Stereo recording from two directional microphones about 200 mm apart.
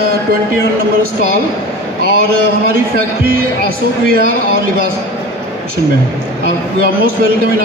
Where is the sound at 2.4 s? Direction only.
50° right (ahead or behind).